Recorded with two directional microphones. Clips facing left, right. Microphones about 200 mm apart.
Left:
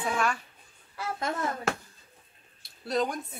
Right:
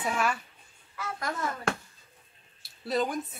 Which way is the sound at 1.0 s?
25° left (ahead or behind).